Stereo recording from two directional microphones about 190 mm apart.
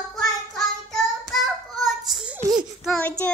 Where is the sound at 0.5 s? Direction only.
Centre (ahead or behind).